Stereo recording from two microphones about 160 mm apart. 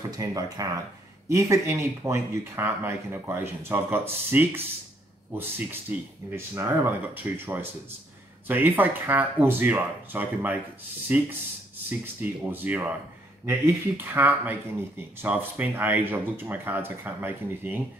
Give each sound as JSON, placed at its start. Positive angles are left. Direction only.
{"t": 0.2, "sound": "speech", "side_deg": -25}
{"t": 8.5, "sound": "speech", "side_deg": -10}